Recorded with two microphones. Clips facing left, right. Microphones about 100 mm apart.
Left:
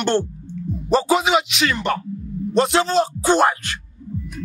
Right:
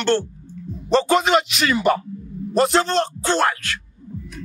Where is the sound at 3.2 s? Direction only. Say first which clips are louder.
Left 3 dB; 15° left (ahead or behind).